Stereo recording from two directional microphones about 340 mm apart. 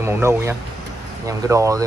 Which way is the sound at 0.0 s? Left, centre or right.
Centre.